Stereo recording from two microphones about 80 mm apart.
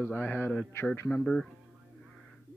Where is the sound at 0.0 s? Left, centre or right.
Left.